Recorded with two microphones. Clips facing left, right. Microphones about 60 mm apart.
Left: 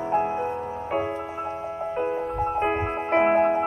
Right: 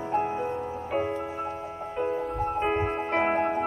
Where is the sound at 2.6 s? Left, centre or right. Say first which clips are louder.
Even; centre.